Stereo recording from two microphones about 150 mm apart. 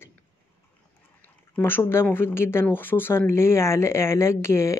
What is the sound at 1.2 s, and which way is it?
Speech, 10° left (ahead or behind).